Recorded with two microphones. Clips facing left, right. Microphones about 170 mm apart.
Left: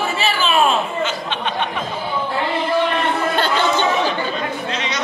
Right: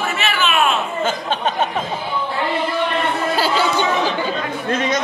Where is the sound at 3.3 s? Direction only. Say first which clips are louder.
Right 2 dB; 5° right (ahead or behind).